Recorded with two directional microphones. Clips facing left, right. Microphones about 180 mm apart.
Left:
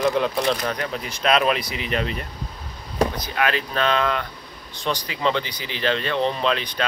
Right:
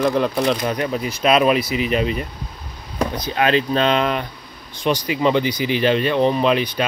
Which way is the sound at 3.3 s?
25° right (ahead or behind).